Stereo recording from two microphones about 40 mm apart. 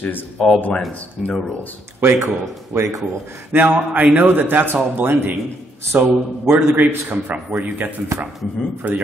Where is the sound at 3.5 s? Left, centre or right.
Right.